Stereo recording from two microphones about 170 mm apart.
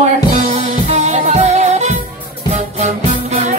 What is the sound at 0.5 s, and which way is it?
Music, 40° right (ahead or behind).